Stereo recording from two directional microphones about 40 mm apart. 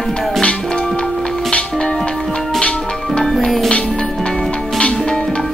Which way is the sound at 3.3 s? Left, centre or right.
Centre.